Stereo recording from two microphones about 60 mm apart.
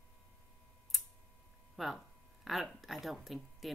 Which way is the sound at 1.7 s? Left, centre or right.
Centre.